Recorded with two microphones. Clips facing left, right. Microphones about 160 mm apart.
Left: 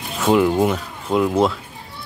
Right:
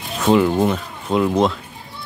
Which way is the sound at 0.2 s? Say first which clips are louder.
Even; 5° left (ahead or behind).